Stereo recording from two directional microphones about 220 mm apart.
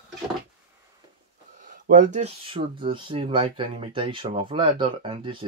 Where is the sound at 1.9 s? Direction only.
35° right (ahead or behind).